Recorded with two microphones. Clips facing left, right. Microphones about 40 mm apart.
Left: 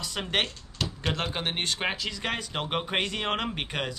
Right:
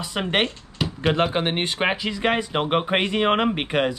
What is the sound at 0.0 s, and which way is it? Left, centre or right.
Speech, right.